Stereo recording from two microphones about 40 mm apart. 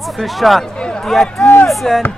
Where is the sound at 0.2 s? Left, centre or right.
Centre.